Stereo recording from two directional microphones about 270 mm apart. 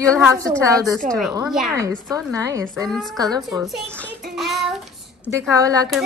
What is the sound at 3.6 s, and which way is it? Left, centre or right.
Speech, centre.